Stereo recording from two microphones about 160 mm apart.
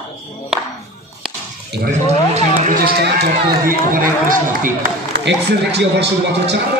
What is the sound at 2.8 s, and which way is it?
Speech, 85° right.